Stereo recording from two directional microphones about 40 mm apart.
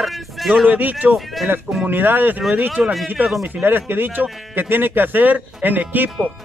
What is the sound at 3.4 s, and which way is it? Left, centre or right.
Speech, right.